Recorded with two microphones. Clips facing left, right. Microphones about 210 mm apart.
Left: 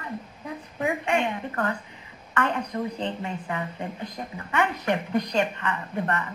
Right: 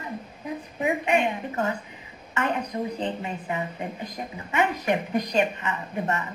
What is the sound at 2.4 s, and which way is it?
A woman's voice, 15° right (ahead or behind).